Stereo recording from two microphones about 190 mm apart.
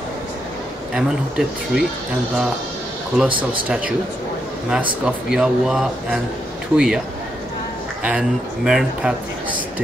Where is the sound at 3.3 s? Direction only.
25° right (ahead or behind).